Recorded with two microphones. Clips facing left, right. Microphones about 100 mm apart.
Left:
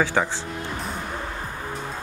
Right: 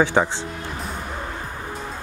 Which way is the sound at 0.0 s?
20° right (ahead or behind).